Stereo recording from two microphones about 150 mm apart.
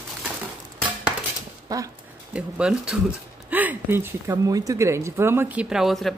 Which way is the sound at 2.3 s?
5° right (ahead or behind).